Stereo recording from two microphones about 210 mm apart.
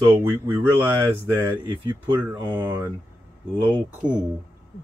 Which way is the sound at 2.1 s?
10° right (ahead or behind).